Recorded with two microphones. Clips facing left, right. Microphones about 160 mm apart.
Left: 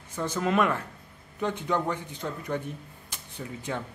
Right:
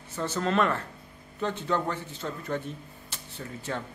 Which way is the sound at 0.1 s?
10° left (ahead or behind).